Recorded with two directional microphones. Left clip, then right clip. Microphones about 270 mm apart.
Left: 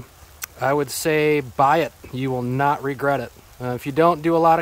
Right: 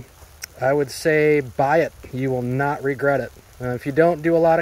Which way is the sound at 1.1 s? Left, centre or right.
Left.